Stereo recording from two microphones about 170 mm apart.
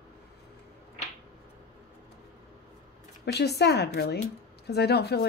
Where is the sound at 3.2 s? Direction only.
75° left (ahead or behind).